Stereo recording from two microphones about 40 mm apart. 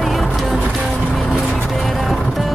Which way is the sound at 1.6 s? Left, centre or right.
Centre.